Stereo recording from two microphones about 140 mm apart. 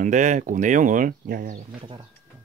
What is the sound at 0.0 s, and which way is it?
Speech, 60° right (ahead or behind).